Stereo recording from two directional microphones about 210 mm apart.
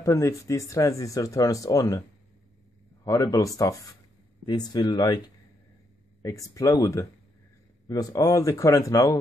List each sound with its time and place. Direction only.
0.0 s speech: 15° left (ahead or behind)
3.1 s speech: 15° left (ahead or behind)
6.2 s speech: 15° left (ahead or behind)